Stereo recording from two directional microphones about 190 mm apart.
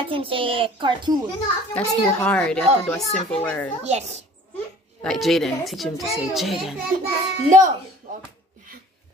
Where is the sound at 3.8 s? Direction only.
35° right (ahead or behind).